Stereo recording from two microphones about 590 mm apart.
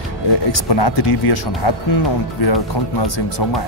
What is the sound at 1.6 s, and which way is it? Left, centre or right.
Speech, left.